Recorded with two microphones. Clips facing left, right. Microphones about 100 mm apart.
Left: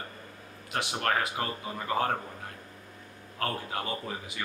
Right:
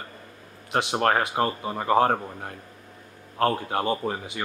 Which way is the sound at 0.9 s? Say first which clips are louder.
Right 7 dB; 45° right (ahead or behind).